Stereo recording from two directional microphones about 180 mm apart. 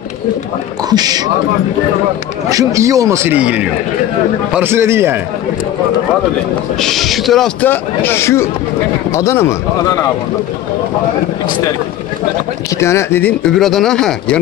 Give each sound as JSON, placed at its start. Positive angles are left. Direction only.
{"t": 0.8, "sound": "a man's voice", "side_deg": -20}
{"t": 2.5, "sound": "speech", "side_deg": -15}
{"t": 6.8, "sound": "speech", "side_deg": 0}
{"t": 12.7, "sound": "speech", "side_deg": 15}